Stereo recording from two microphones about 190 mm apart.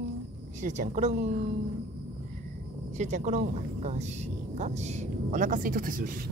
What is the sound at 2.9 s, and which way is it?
Speech, 40° right (ahead or behind).